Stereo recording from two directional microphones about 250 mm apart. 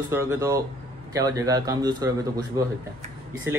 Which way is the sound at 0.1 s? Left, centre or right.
Centre.